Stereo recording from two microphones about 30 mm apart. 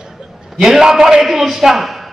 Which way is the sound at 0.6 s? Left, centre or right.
Centre.